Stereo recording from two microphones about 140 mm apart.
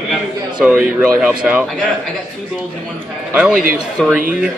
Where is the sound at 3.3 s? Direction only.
5° right (ahead or behind).